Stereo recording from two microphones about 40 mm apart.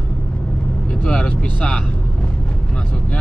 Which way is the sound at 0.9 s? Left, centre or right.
Left.